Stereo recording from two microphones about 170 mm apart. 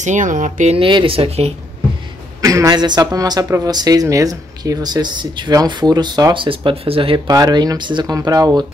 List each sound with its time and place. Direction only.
0.0 s speech: 45° right (ahead or behind)
0.7 s speech: 30° right (ahead or behind)
2.4 s speech: 20° right (ahead or behind)